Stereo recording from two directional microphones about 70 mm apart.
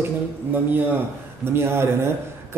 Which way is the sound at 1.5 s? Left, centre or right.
Right.